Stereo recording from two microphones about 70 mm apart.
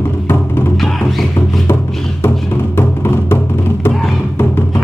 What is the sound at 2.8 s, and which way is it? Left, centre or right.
Music, left.